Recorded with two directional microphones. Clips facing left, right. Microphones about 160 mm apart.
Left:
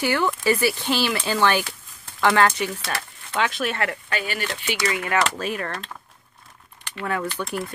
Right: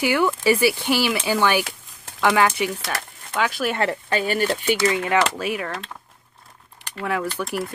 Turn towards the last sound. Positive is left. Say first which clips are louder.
# right 2 dB
turn(degrees=-10)  # may be behind; listen again after turning